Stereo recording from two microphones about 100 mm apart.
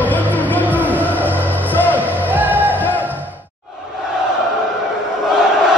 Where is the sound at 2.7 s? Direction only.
20° left (ahead or behind).